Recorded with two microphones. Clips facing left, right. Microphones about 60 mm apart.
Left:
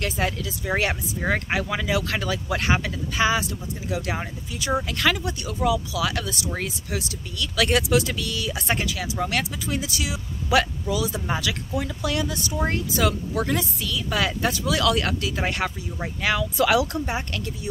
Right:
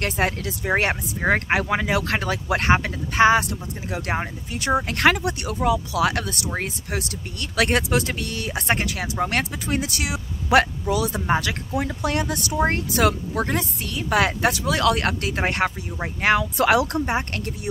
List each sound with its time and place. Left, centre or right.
0.0 s speech: right
5.6 s speech: right
11.2 s speech: right
12.6 s speech: right
13.3 s speech: right